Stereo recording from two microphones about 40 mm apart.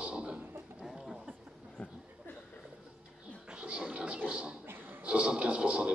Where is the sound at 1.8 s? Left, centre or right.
Left.